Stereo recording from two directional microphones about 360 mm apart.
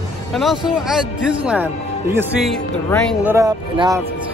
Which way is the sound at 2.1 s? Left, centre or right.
Centre.